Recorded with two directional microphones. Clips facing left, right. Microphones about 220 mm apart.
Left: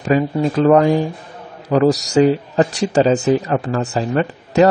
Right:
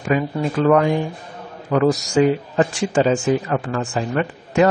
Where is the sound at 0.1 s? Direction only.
35° left (ahead or behind).